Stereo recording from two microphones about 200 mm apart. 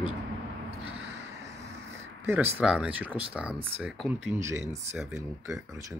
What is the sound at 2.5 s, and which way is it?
Speech, 5° right (ahead or behind).